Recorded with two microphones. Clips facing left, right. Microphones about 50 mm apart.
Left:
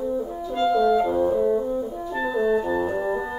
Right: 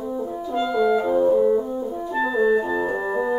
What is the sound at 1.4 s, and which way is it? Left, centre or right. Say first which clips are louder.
French horn: right 2 dB; centre.